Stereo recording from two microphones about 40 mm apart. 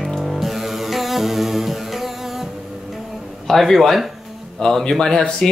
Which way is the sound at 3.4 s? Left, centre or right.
Centre.